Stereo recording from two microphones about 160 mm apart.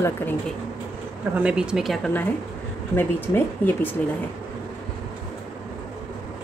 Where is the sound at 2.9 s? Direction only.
10° left (ahead or behind).